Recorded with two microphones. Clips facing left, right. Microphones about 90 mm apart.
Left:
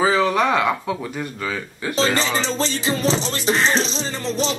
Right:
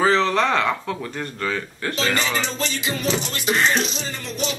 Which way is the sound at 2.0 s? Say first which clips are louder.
Left 3 dB; 30° left (ahead or behind).